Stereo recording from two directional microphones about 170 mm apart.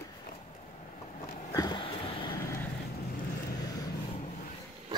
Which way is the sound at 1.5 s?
25° left (ahead or behind).